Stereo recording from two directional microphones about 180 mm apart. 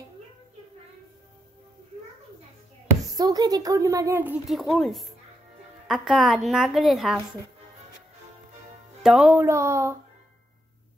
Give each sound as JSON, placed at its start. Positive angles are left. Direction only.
{"t": 3.0, "sound": "a woman's voice", "side_deg": -20}
{"t": 9.0, "sound": "speech", "side_deg": -5}